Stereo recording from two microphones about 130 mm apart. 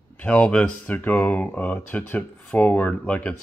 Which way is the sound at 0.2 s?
10° left (ahead or behind).